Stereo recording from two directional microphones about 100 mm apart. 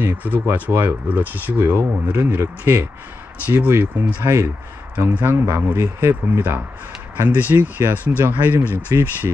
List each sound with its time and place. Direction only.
0.0 s speech: 20° right (ahead or behind)
8.9 s speech: 30° right (ahead or behind)